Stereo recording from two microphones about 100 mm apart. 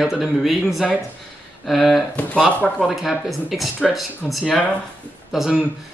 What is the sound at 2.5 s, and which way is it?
Speech, 15° left (ahead or behind).